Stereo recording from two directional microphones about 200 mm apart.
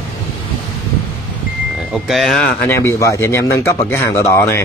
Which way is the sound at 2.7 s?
15° left (ahead or behind).